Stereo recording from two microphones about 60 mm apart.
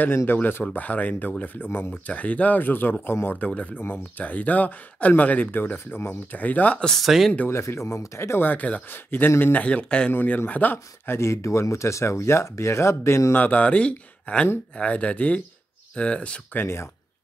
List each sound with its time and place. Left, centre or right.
0.3 s speech: left
2.0 s speech: left
6.9 s speech: centre
7.4 s speech: left; by 10.1 s centre
10.1 s speech: left
11.1 s speech: left
13.3 s speech: left
16.6 s speech: left